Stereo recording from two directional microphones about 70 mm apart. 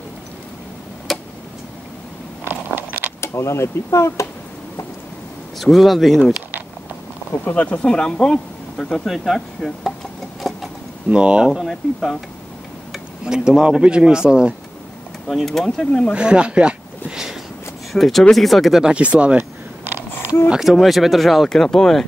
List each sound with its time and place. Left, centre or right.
1.1 s tick-tock: centre
2.4 s a sound: right
3.2 s speech: left
5.6 s speech: centre
7.4 s speech: left
7.8 s speech: centre
10.4 s a sound: centre
11.1 s speech: centre
11.4 s speech: centre
13.2 s speech: centre
15.2 s speech: centre
16.1 s a sound: centre
17.9 s speech: centre; by 20.0 s right
20.4 s speech: centre